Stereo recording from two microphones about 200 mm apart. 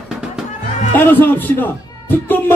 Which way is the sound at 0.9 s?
10° left (ahead or behind).